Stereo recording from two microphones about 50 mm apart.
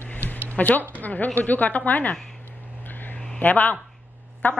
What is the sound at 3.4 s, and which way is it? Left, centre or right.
Speech, left.